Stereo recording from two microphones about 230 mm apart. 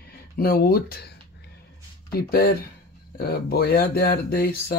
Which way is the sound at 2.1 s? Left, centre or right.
Left.